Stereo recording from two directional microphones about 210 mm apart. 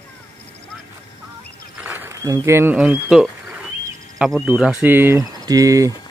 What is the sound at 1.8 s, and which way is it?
Speech, 10° right (ahead or behind).